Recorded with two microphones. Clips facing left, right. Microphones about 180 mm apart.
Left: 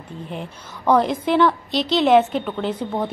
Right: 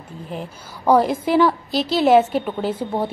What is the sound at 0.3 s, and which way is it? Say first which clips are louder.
A woman's voice: right 4 dB; 5° right (ahead or behind).